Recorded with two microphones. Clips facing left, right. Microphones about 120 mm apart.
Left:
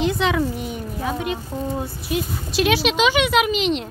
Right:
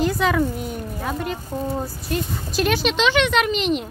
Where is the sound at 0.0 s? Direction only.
5° right (ahead or behind).